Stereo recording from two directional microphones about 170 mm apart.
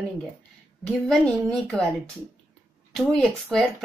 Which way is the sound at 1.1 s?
5° left (ahead or behind).